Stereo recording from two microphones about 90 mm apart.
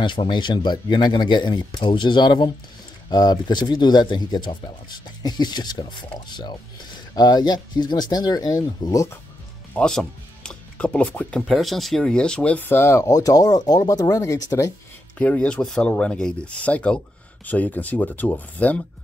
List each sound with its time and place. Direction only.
0.0 s speech: 60° left (ahead or behind); by 9.2 s 35° left (ahead or behind)
9.8 s speech: 10° left (ahead or behind)
11.4 s speech: centre (ahead or behind); by 13.1 s 30° left (ahead or behind)
13.1 s speech: 40° left (ahead or behind)
15.1 s speech: 15° left (ahead or behind)